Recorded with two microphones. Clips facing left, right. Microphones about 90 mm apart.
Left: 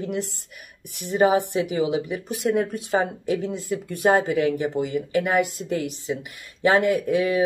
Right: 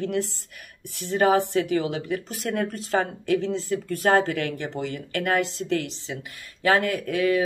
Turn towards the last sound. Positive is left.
turn(degrees=20)  # may be behind; listen again after turning